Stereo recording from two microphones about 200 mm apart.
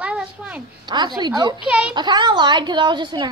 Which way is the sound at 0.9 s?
20° right (ahead or behind).